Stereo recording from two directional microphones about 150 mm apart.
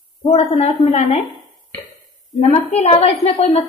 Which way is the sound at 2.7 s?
45° left (ahead or behind).